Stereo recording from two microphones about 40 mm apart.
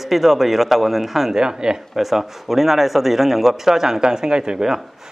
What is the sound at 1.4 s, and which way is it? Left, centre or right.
Speech, centre.